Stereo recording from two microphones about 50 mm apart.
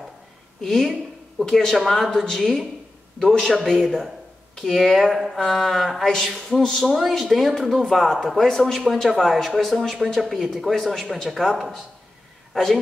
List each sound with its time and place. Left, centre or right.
0.6 s speech: centre
4.9 s speech: centre